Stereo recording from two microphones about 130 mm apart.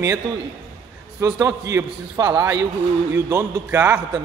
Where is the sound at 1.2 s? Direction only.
20° right (ahead or behind).